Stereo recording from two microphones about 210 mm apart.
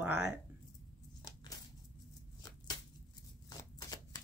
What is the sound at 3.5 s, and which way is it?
Shuffling cards, 20° left (ahead or behind).